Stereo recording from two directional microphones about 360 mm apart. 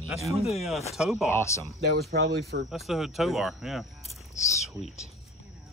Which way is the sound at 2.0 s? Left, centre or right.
Right.